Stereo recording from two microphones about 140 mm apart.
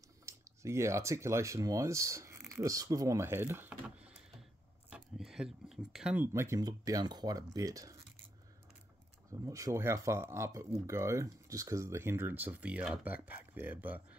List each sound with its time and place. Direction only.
0.2 s speech: 20° right (ahead or behind)
9.3 s speech: 20° right (ahead or behind)